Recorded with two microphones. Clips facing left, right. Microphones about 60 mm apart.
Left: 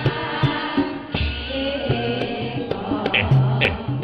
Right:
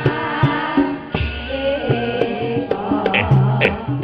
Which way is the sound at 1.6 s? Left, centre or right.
Centre.